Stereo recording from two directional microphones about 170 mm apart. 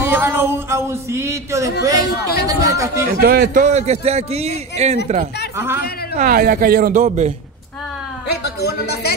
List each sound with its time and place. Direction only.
0.0 s speech: 15° right (ahead or behind)
3.1 s a man's voice: 60° right (ahead or behind); by 5.2 s 40° right (ahead or behind)
6.1 s speech: 55° right (ahead or behind)
8.3 s speech: 70° left (ahead or behind)